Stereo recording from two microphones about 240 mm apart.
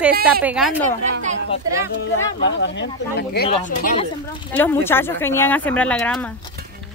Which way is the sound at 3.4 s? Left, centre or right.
Left.